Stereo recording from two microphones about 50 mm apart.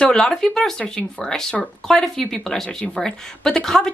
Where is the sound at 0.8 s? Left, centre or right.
Centre.